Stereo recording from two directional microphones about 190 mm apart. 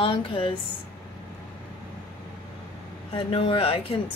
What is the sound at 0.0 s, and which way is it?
Speech, 30° left (ahead or behind).